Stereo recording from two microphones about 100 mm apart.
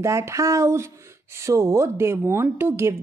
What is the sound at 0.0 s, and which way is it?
A woman's voice, 30° right (ahead or behind).